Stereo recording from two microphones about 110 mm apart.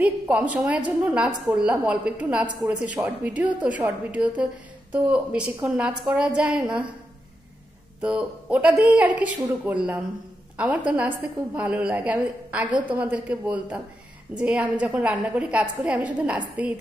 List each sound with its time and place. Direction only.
0.0 s a woman's voice: 10° right (ahead or behind)
8.0 s a woman's voice: 10° right (ahead or behind)